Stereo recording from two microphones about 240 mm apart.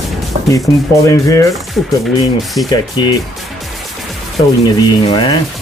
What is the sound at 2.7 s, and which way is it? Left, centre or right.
Speech, centre.